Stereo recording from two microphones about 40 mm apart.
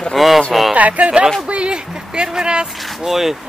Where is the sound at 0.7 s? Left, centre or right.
Right.